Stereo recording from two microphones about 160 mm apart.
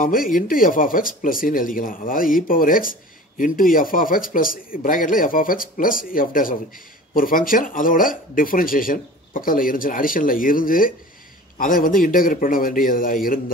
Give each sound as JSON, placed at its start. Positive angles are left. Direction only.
{"t": 0.0, "sound": "speech", "side_deg": 60}